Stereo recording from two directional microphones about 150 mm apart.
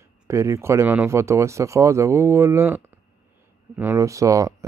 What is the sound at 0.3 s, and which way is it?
Speech, 20° right (ahead or behind).